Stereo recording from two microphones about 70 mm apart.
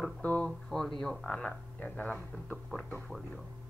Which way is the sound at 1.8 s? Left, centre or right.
Left.